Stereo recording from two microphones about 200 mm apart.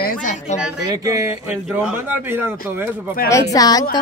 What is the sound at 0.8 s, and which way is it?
Speech, 15° right (ahead or behind).